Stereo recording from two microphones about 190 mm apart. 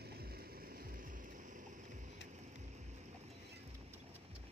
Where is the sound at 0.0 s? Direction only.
55° right (ahead or behind).